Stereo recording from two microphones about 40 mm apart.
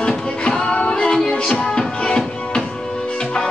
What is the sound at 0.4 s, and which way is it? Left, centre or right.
Music, left.